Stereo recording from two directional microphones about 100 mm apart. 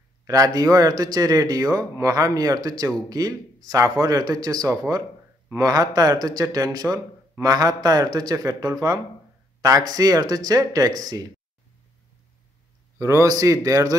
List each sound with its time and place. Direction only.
0.3 s a man's voice: 40° right (ahead or behind)
13.0 s a man's voice: 30° right (ahead or behind)